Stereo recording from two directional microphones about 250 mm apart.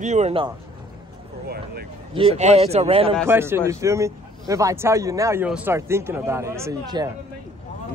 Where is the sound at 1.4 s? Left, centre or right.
Right.